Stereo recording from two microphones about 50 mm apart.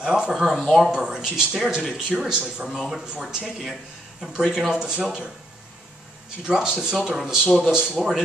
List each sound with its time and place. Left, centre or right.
0.0 s speech: centre
0.3 s speech: centre
0.9 s speech: centre
2.7 s speech: centre
6.4 s speech: centre